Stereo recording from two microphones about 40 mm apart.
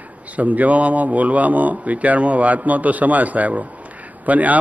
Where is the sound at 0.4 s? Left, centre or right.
Right.